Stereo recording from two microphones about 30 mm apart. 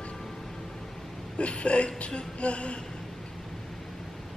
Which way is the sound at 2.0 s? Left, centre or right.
Left.